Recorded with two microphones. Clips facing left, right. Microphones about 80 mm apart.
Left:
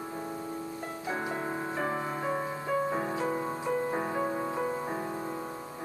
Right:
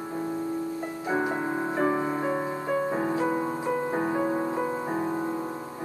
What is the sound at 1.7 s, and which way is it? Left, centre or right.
Music, centre.